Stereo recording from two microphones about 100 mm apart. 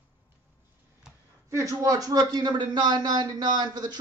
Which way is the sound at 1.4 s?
35° right (ahead or behind).